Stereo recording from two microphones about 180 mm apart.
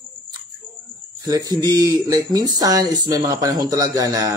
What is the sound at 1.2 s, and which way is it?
Speech, 20° right (ahead or behind).